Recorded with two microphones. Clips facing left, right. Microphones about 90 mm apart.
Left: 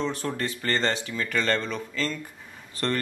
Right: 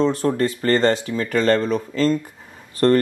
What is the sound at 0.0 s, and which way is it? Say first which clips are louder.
Speech: right 10 dB; 40° right (ahead or behind).